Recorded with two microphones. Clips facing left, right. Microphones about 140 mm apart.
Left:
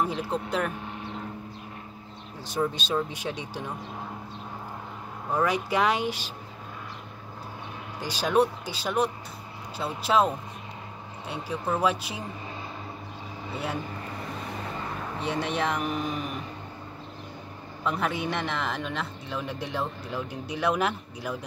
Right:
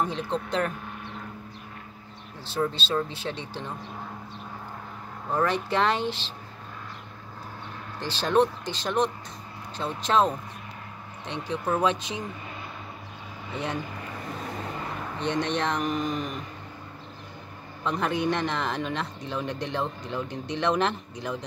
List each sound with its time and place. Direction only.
0.0 s speech: 10° left (ahead or behind)
2.4 s speech: 15° left (ahead or behind)
5.3 s speech: 10° left (ahead or behind)
8.0 s speech: 10° left (ahead or behind)
15.1 s a man's voice: 5° left (ahead or behind)
17.8 s a man's voice: 5° left (ahead or behind)